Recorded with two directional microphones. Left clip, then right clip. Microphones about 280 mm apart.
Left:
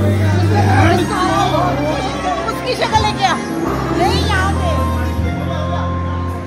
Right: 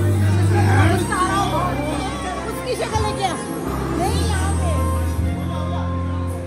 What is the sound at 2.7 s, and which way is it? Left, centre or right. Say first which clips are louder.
Music: left 7 dB; left.